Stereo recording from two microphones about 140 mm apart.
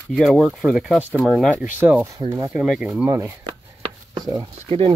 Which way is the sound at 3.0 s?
20° right (ahead or behind).